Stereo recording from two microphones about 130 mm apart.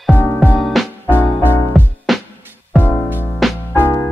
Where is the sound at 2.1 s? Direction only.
Centre (ahead or behind).